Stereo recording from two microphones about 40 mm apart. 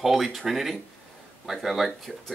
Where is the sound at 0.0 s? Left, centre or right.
Centre.